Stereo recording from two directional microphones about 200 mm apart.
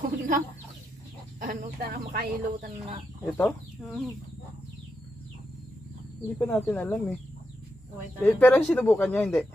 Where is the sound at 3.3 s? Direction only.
5° left (ahead or behind).